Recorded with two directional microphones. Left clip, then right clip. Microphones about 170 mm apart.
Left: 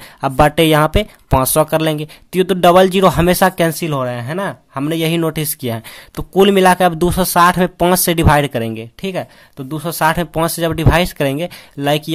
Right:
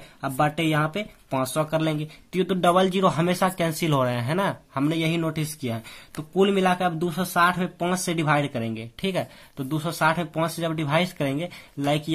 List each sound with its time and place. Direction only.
0.2 s speech: 55° left (ahead or behind); by 12.0 s 35° left (ahead or behind)